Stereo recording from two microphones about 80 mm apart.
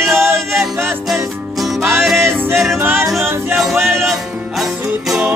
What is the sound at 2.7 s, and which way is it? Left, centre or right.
Yodeling, right.